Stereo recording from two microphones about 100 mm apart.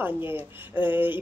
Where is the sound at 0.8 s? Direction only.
60° left (ahead or behind).